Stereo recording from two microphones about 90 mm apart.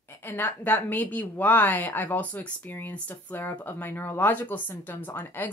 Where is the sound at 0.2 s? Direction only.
20° left (ahead or behind).